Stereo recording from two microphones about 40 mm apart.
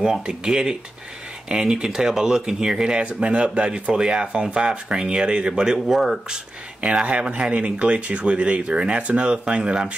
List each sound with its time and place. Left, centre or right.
1.5 s speech: centre